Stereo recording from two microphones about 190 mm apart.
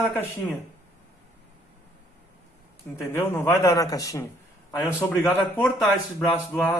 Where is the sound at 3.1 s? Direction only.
15° left (ahead or behind).